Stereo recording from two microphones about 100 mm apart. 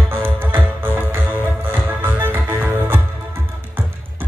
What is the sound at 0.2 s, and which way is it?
Music, 20° right (ahead or behind).